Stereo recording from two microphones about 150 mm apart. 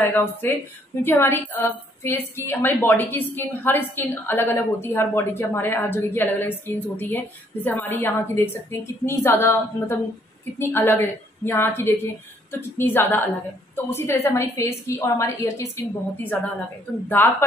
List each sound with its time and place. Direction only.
0.0 s a woman's voice: 10° left (ahead or behind)